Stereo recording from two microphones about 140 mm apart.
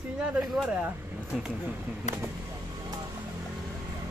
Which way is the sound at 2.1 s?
60° left (ahead or behind).